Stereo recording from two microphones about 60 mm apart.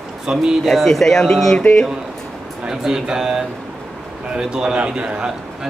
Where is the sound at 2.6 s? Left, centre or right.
Centre.